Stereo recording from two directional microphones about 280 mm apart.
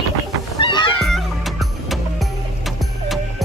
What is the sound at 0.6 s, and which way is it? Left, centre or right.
Music, centre.